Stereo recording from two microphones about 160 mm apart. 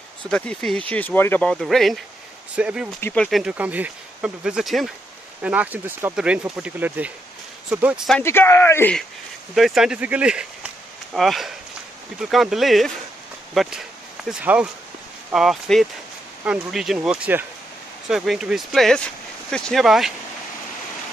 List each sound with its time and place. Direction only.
0.3 s speech: 5° left (ahead or behind)
3.0 s speech: 10° left (ahead or behind)
3.3 s speech: 5° right (ahead or behind)
8.2 s speech: 15° left (ahead or behind)
9.6 s speech: centre (ahead or behind)